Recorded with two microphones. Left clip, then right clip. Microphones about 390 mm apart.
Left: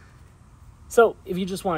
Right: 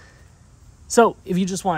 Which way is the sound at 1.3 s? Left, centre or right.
Centre.